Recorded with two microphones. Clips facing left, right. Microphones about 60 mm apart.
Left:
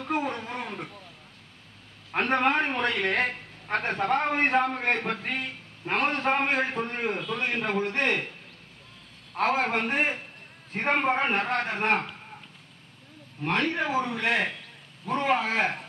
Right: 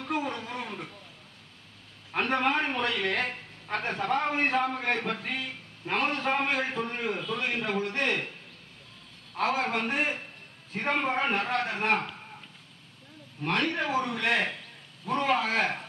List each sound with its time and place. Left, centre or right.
0.2 s a sound: left
2.1 s a man's voice: left
9.3 s a man's voice: left
13.5 s speech: left